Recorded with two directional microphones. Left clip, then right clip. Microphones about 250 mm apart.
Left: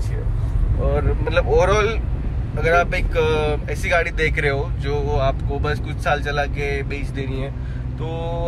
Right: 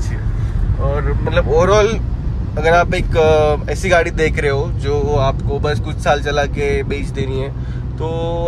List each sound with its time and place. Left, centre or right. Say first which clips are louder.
0.9 s speech: right 3 dB; centre
1.7 s speech: right 6 dB; centre